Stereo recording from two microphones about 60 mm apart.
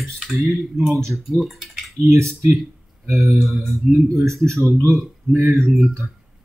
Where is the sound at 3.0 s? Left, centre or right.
Right.